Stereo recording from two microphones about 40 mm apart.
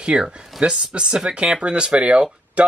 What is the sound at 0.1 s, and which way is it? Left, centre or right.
Speech, centre.